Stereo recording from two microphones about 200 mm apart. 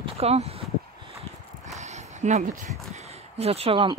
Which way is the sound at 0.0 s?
30° right (ahead or behind).